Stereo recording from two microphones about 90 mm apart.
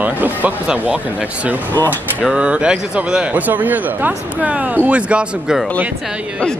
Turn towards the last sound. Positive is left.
turn(degrees=-10)  # may be behind; listen again after turning